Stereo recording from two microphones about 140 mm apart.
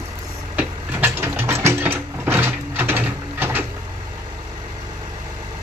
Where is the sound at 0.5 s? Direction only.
10° right (ahead or behind).